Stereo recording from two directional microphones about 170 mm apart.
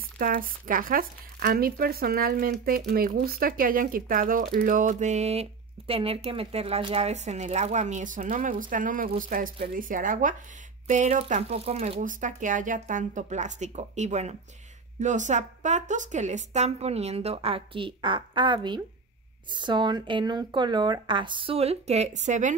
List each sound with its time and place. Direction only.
0.0 s speech: 55° right (ahead or behind)
10.9 s a woman's voice: 40° right (ahead or behind)
12.0 s a woman's voice: 50° right (ahead or behind)